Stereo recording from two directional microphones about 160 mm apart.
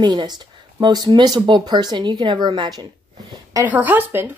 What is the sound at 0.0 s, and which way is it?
Speech, 25° right (ahead or behind).